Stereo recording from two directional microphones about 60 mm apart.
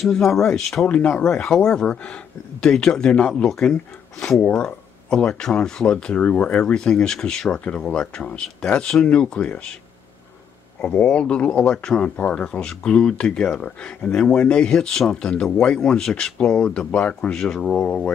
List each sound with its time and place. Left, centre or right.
0.0 s speech: centre
0.8 s speech: left
1.2 s speech: centre
4.4 s speech: left
4.6 s speech: centre
10.8 s speech: left
12.0 s speech: left; by 18.0 s centre